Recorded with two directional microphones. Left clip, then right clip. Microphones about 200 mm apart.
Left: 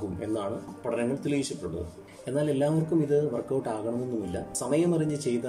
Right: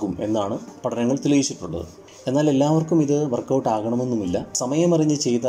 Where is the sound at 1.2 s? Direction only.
20° right (ahead or behind).